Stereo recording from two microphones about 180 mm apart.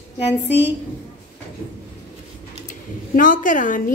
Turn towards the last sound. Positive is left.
turn(degrees=45)  # may be behind; listen again after turning